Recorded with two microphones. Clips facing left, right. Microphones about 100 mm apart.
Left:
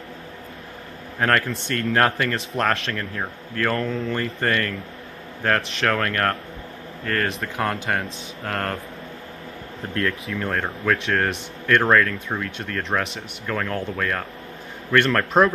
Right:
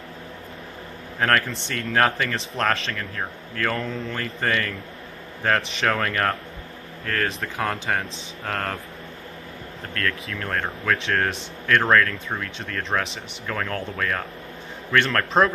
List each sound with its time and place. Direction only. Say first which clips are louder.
1.2 s speech: left 1 dB; centre (ahead or behind)
10.2 s speech: left 2 dB; 5° left (ahead or behind)